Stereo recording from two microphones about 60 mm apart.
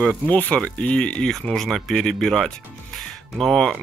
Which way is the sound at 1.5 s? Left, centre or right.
Centre.